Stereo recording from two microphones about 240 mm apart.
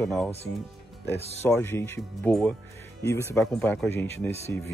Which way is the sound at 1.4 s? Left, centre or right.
Centre.